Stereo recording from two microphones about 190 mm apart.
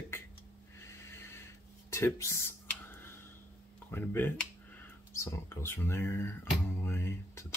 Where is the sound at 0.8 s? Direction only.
15° left (ahead or behind).